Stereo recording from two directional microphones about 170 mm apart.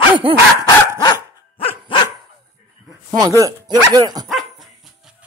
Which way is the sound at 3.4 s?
25° right (ahead or behind).